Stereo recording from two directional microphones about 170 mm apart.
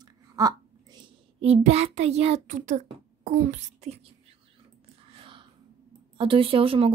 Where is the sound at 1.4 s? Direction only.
40° right (ahead or behind).